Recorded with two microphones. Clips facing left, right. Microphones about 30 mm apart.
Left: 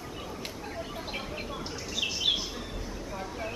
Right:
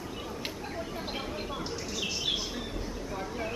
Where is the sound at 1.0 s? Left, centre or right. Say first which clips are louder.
Right 1 dB; centre.